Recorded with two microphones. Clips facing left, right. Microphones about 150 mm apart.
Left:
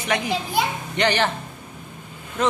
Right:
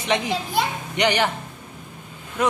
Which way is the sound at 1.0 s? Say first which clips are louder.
Even; 15° right (ahead or behind).